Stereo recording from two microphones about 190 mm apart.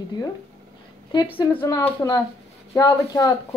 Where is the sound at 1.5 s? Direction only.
15° left (ahead or behind).